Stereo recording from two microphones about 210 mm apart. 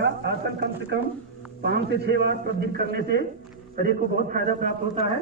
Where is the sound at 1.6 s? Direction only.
50° right (ahead or behind); by 5.1 s 35° right (ahead or behind).